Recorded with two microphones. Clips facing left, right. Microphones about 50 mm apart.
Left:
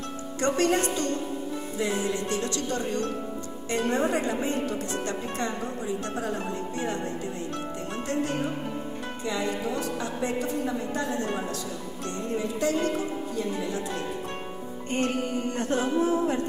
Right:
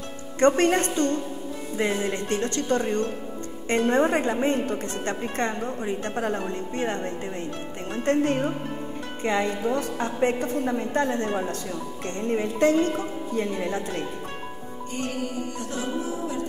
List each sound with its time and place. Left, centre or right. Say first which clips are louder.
0.4 s a woman's voice: right 5 dB; right
14.9 s music: left 3 dB; left